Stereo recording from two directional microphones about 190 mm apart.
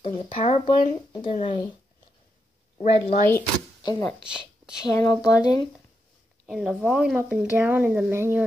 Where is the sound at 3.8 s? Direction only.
20° left (ahead or behind).